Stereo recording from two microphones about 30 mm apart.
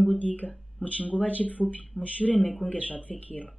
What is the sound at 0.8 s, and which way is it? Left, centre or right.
Speech, right.